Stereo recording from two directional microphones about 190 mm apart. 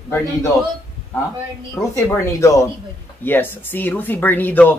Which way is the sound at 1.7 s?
15° left (ahead or behind).